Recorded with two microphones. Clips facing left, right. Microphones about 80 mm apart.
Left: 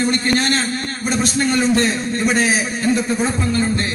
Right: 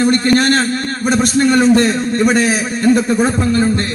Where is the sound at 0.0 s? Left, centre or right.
Right.